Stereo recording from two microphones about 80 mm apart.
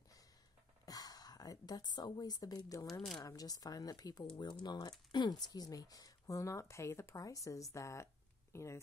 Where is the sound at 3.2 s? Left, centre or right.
Left.